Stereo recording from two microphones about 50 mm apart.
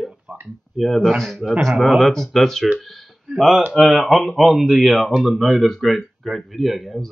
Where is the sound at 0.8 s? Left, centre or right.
Centre.